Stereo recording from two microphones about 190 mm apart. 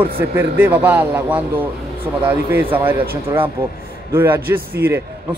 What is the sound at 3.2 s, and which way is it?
Speech, 30° right (ahead or behind).